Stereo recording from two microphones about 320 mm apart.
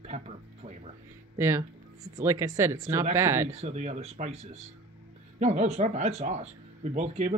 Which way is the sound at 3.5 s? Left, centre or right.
Centre.